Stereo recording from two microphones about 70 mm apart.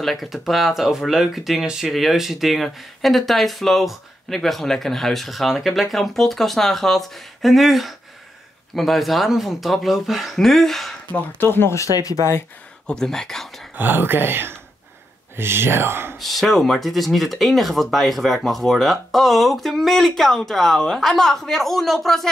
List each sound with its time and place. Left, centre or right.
0.0 s speech: centre
11.1 s speech: left
11.7 s speech: left
12.8 s speech: centre
13.7 s speech: right
16.2 s speech: centre